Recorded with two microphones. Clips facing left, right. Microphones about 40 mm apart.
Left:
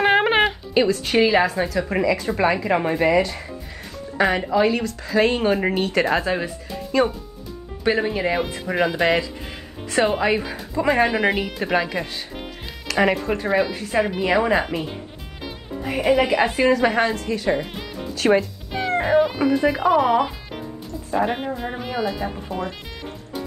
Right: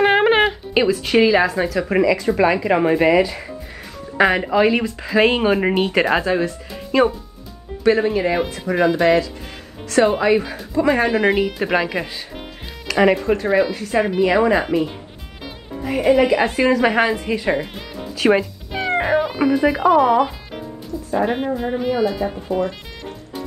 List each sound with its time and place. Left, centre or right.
0.0 s music: centre
1.2 s speech: centre
2.6 s speech: centre
4.5 s speech: centre
7.8 s speech: centre
16.0 s speech: centre
16.8 s speech: centre
17.6 s music: centre
19.0 s speech: centre